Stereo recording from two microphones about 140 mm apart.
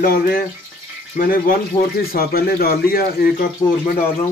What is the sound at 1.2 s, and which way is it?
Speech, 80° left.